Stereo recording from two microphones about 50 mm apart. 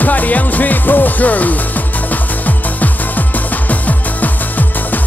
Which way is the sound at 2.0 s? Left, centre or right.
Left.